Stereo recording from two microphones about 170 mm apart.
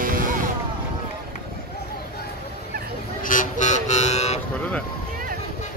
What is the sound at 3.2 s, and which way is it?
Vehicle, 50° left (ahead or behind).